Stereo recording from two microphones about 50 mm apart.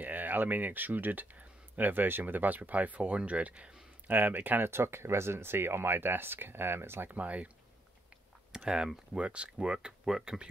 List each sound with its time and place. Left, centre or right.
0.0 s speech: right
4.1 s speech: right
4.6 s speech: right
7.2 s speech: right
8.5 s speech: centre
9.2 s speech: right